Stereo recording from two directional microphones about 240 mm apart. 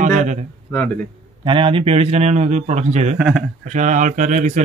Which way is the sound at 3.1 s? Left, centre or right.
Centre.